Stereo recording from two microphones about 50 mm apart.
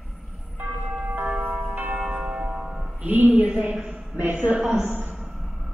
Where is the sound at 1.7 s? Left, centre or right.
Right.